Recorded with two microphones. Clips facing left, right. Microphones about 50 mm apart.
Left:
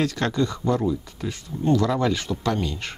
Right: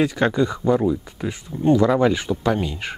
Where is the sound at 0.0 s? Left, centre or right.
Centre.